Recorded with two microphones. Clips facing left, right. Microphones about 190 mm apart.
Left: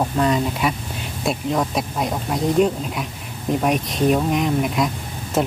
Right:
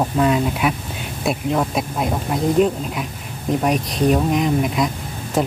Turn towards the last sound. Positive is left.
turn(degrees=0)  # may be behind; listen again after turning